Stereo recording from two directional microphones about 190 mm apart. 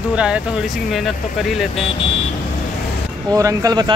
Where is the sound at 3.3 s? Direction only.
20° right (ahead or behind).